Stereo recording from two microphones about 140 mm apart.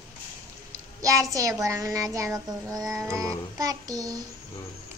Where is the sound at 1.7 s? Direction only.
20° right (ahead or behind).